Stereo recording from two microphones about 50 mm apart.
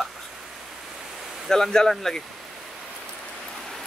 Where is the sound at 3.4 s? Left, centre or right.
Centre.